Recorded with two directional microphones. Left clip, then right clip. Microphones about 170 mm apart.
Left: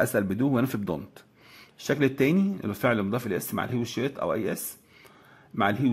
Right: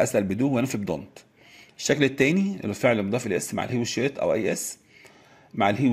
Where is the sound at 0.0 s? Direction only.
5° left (ahead or behind).